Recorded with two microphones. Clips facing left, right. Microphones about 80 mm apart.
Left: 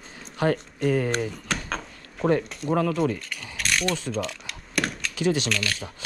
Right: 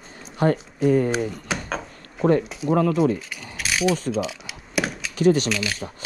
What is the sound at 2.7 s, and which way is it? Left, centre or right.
Speech, right.